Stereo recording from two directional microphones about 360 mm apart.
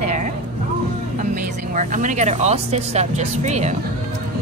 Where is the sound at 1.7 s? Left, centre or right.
Right.